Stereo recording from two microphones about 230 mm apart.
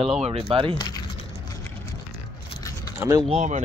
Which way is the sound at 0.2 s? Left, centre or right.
Right.